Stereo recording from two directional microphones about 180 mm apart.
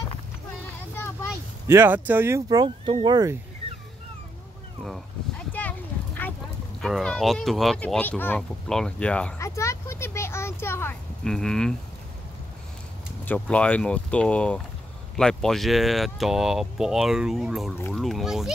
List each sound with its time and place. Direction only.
1.7 s speech: 10° right (ahead or behind)
5.5 s a sound: 10° left (ahead or behind)
6.8 s speech: centre (ahead or behind)
11.2 s speech: 5° left (ahead or behind)
13.2 s speech: 10° left (ahead or behind)